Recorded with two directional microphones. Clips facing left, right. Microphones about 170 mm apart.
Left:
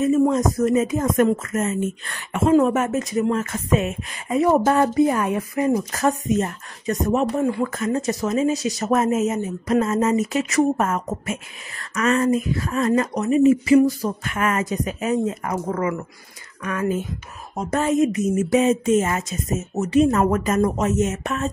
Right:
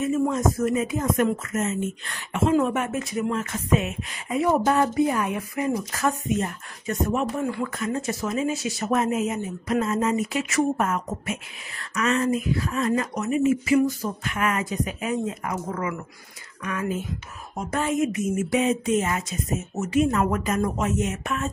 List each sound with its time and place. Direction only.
0.6 s speech: 40° left (ahead or behind)
2.5 s speech: 40° left (ahead or behind)
17.6 s speech: 40° left (ahead or behind)